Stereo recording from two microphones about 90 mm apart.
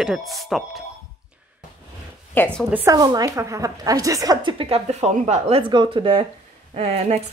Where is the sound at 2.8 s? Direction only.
45° right (ahead or behind).